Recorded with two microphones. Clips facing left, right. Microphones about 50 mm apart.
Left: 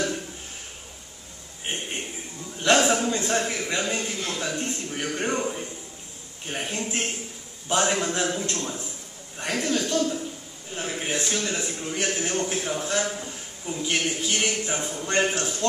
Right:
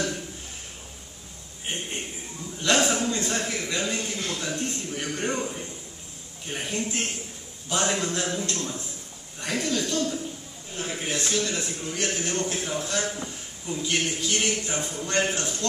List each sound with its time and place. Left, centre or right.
2.6 s a sound: left
4.4 s speech: left
9.4 s chuckle: left
10.8 s a man's voice: left